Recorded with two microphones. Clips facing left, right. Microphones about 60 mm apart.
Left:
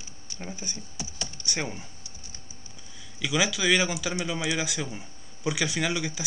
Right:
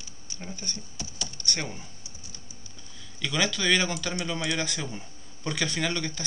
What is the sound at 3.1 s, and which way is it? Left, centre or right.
Speech, centre.